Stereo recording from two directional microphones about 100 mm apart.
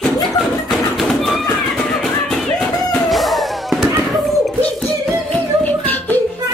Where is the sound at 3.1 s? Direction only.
Centre (ahead or behind).